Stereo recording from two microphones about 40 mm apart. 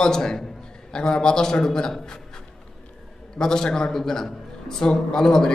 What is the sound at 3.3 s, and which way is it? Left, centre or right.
A man's voice, centre.